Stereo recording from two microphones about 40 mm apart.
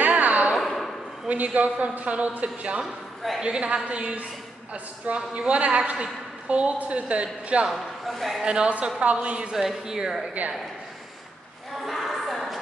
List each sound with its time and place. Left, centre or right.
0.0 s a sound: right
0.6 s a sound: centre
1.3 s a woman's voice: right
2.8 s a man's voice: centre
3.4 s a woman's voice: right
6.5 s a woman's voice: right
8.0 s a man's voice: centre
8.5 s a woman's voice: right
9.5 s speech: centre
10.4 s a woman's voice: right
11.8 s a sound: centre